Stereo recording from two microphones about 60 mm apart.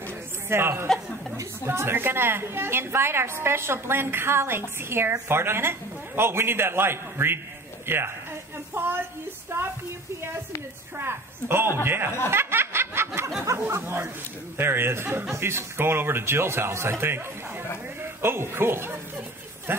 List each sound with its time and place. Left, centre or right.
0.5 s a man's voice: right
11.0 s a woman's voice: right
12.3 s snicker: right
13.7 s a man's voice: right